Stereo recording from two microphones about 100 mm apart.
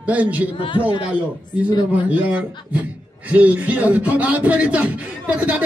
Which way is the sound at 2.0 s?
15° right (ahead or behind).